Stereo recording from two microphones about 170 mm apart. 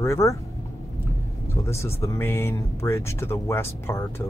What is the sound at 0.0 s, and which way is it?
Speech, 15° left (ahead or behind).